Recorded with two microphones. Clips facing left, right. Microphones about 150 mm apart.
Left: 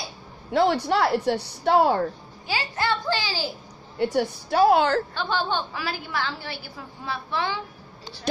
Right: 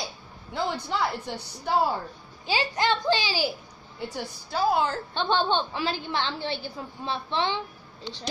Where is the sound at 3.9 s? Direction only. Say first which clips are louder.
Left 11 dB; 70° left (ahead or behind).